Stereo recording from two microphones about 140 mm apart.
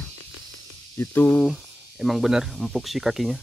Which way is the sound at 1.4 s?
Centre (ahead or behind).